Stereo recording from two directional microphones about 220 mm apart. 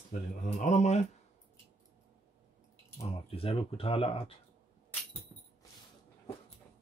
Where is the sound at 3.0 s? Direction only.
25° left (ahead or behind).